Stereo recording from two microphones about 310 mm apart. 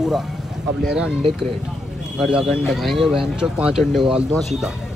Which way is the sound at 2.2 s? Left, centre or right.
Centre.